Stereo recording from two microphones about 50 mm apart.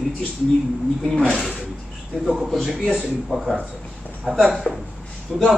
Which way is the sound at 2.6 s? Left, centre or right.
Centre.